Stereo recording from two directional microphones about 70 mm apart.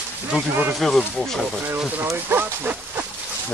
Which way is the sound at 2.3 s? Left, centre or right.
Right.